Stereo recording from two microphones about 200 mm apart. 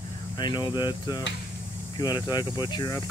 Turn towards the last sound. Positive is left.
turn(degrees=20)  # may be behind; listen again after turning